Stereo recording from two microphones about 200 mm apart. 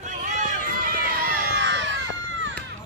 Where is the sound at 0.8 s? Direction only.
50° right (ahead or behind); by 2.5 s 65° right (ahead or behind).